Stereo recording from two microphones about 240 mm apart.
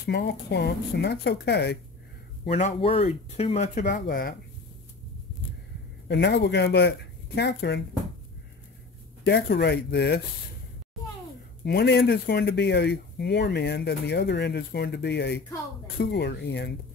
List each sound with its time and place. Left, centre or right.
0.0 s speech: left
2.4 s speech: left
6.0 s speech: left
9.2 s speech: left
11.6 s speech: left